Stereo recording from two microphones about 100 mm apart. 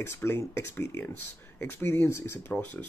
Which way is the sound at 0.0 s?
25° left (ahead or behind).